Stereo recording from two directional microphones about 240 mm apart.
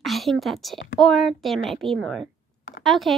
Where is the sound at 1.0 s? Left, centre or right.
Centre.